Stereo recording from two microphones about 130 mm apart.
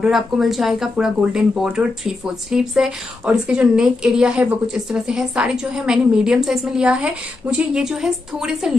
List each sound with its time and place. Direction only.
0.0 s speech: centre (ahead or behind)